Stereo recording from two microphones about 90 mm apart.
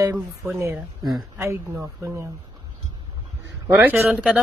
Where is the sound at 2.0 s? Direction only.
30° right (ahead or behind).